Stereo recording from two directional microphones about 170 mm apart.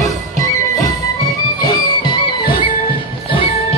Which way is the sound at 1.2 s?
25° left (ahead or behind).